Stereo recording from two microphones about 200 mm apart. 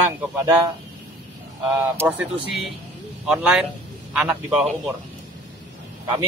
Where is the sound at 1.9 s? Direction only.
5° right (ahead or behind).